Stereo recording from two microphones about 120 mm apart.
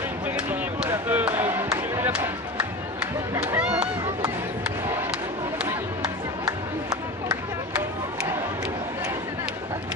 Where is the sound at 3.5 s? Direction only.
10° right (ahead or behind).